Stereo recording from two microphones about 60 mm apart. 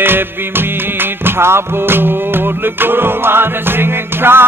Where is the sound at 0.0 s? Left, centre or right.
Right.